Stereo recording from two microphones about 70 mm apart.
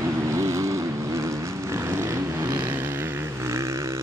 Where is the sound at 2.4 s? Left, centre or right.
Right.